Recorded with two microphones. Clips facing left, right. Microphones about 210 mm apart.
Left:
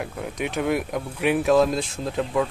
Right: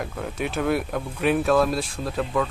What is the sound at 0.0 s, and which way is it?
Speech, 15° left (ahead or behind).